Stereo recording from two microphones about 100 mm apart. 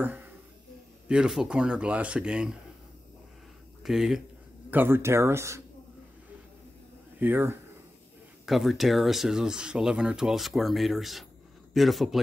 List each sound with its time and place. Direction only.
0.0 s speech: 20° right (ahead or behind)
1.0 s speech: 10° right (ahead or behind)
3.8 s speech: 5° right (ahead or behind)
4.6 s speech: 20° right (ahead or behind)
7.2 s speech: 20° right (ahead or behind)
8.5 s speech: centre (ahead or behind)